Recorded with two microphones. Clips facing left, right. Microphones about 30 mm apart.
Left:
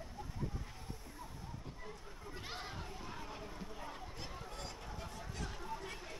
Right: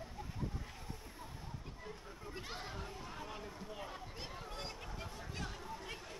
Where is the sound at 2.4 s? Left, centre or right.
Centre.